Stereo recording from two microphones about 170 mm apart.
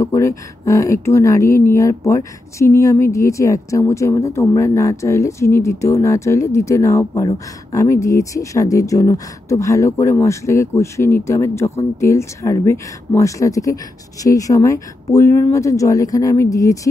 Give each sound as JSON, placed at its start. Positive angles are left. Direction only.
{"t": 0.0, "sound": "speech", "side_deg": 15}